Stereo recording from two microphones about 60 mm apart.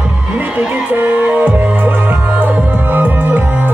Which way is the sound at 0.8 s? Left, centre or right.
Right.